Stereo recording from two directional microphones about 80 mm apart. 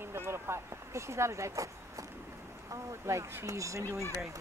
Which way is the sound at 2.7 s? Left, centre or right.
Right.